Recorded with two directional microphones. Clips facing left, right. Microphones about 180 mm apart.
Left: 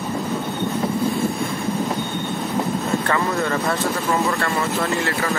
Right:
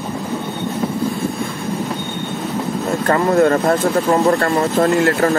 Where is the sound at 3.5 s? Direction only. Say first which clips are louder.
Right 7 dB; 50° right (ahead or behind).